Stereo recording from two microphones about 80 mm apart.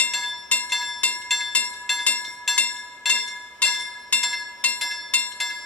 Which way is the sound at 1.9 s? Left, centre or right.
Centre.